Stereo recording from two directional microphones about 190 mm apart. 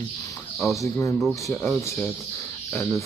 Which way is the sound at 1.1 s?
Centre (ahead or behind).